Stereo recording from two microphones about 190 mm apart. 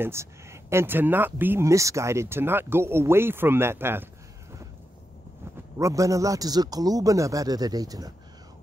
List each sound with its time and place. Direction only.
0.0 s speech: 15° right (ahead or behind)
5.8 s a man's voice: 15° right (ahead or behind)